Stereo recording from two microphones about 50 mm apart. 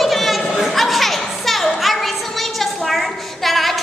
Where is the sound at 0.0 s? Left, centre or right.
Centre.